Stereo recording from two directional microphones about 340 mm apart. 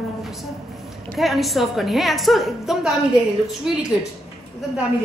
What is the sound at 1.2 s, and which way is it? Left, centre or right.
A woman's voice, centre.